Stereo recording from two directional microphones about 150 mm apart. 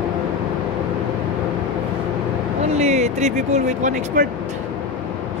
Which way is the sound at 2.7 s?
50° right (ahead or behind).